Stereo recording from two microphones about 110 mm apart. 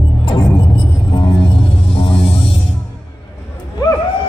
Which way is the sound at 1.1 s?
50° left (ahead or behind).